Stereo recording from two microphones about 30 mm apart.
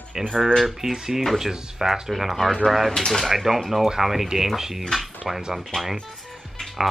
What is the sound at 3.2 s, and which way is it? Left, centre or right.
Speech, centre.